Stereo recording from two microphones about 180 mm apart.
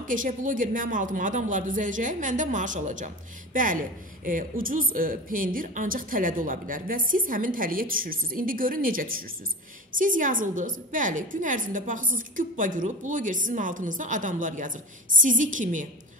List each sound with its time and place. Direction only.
0.0 s a woman's voice: 45° right (ahead or behind)